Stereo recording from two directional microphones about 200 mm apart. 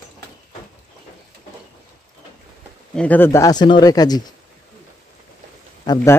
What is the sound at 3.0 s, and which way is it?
Speech, 10° left (ahead or behind).